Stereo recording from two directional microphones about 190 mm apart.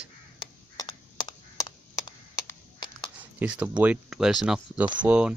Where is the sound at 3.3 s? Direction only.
10° right (ahead or behind).